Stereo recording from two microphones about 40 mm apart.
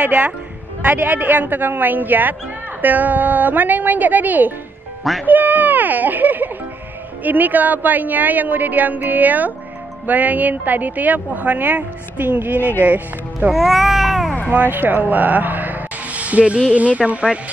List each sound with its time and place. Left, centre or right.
0.0 s a woman's voice: right
12.5 s speech: left
12.8 s a woman's voice: right
13.5 s speech: centre
14.5 s speech: right